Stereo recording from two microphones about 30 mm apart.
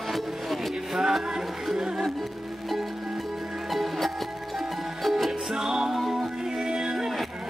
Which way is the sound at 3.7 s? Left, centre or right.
Centre.